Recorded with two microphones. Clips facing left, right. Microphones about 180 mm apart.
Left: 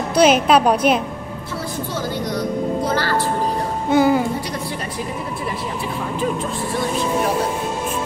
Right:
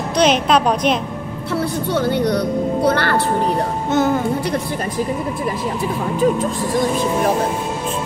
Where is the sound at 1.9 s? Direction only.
65° right (ahead or behind).